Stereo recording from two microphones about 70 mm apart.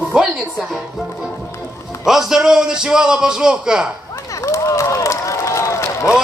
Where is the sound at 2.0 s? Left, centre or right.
Centre.